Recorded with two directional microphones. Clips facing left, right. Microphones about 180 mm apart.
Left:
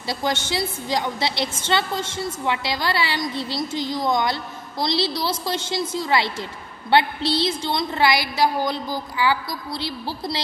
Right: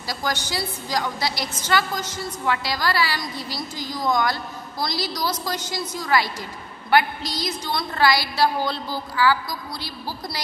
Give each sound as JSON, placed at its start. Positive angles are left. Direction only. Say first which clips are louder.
{"t": 0.0, "sound": "a woman's voice", "louder": "left 3 dB", "side_deg": 25}